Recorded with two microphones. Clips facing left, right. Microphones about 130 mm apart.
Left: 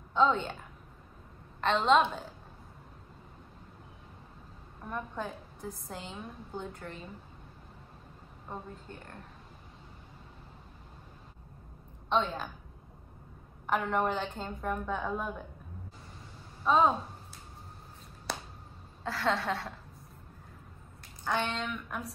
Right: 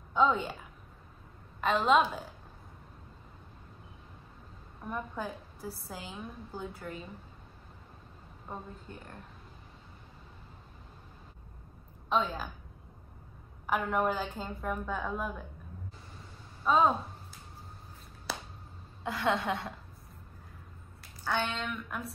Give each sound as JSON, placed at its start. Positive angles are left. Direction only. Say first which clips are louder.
{"t": 0.1, "sound": "a woman's voice", "louder": "even", "side_deg": -5}
{"t": 4.8, "sound": "a woman's voice", "louder": "even", "side_deg": -5}
{"t": 12.1, "sound": "a woman's voice", "louder": "left 1 dB", "side_deg": -5}
{"t": 13.7, "sound": "a woman's voice", "louder": "even", "side_deg": -5}
{"t": 16.6, "sound": "a woman's voice", "louder": "even", "side_deg": 0}
{"t": 18.3, "sound": "a sound", "louder": "left 1 dB", "side_deg": -5}
{"t": 19.0, "sound": "a woman's voice", "louder": "right 1 dB", "side_deg": -15}
{"t": 21.3, "sound": "a woman's voice", "louder": "left 1 dB", "side_deg": 0}